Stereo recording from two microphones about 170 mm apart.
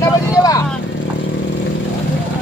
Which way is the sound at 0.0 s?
20° left (ahead or behind).